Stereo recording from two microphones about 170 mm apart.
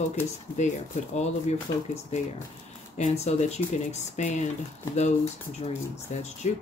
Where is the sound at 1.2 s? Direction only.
40° left (ahead or behind).